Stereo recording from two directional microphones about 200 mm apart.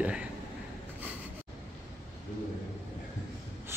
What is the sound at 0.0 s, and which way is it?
Speech, 5° right (ahead or behind).